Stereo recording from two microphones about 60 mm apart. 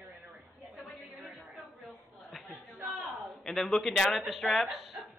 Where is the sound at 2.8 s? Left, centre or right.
Right.